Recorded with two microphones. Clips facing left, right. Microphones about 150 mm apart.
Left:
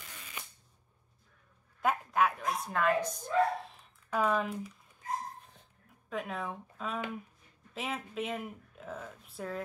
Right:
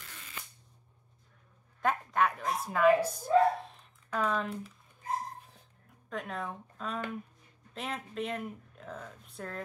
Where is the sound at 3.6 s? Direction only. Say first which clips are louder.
Right 1 dB; 5° left (ahead or behind).